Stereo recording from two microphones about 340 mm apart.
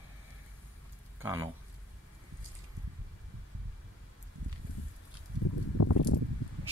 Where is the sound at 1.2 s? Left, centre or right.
Centre.